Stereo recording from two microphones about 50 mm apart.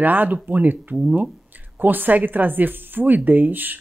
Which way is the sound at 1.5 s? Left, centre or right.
Right.